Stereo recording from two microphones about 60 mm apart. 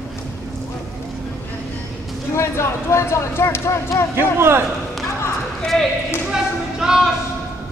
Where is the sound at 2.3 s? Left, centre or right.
Left.